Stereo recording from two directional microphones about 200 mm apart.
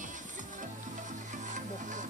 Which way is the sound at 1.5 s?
40° right (ahead or behind).